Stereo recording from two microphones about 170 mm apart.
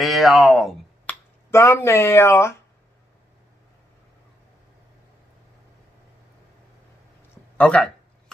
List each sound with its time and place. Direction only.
0.0 s a sound: centre (ahead or behind)
1.5 s speech: 15° left (ahead or behind)
7.5 s speech: 5° left (ahead or behind)